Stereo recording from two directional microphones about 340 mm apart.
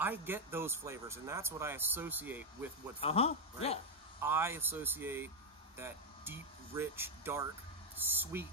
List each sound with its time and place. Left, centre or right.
0.0 s speech: centre
3.0 s speech: centre
4.2 s speech: centre